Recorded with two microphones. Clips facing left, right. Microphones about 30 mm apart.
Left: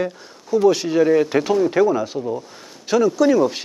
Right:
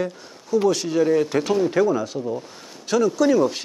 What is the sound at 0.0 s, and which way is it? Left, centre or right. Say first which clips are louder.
Speech: left 2 dB; centre.